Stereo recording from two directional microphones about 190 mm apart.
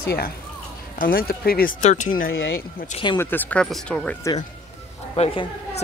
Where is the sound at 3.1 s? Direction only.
10° left (ahead or behind).